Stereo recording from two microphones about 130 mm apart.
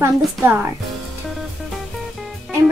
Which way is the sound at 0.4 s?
15° right (ahead or behind).